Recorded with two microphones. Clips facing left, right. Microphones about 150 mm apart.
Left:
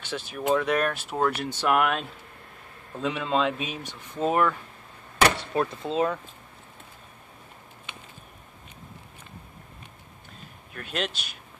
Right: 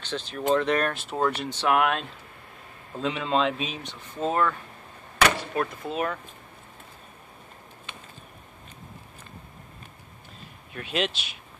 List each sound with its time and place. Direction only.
0.0 s speech: 10° left (ahead or behind)
5.5 s speech: 25° left (ahead or behind)
10.7 s speech: centre (ahead or behind)